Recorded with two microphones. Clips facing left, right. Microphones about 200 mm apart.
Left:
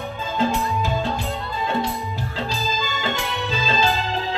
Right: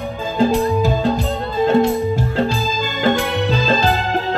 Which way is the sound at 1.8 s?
50° right (ahead or behind).